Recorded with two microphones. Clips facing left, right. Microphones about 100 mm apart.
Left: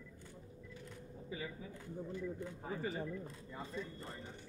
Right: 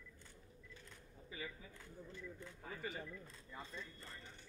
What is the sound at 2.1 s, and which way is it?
Speech, 30° left (ahead or behind).